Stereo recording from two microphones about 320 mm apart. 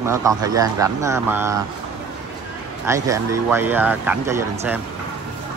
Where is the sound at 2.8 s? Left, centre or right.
Centre.